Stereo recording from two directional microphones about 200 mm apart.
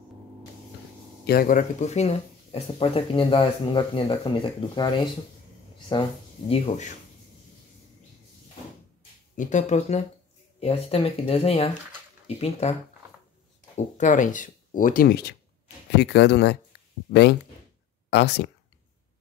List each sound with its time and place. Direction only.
1.2 s speech: 45° left (ahead or behind); by 4.8 s 25° left (ahead or behind)
5.9 s speech: 20° left (ahead or behind)
9.4 s speech: 35° left (ahead or behind)
13.9 s speech: 40° left (ahead or behind); by 18.5 s 55° left (ahead or behind)